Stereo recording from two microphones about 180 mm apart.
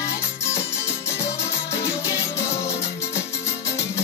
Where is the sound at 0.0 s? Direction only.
15° left (ahead or behind).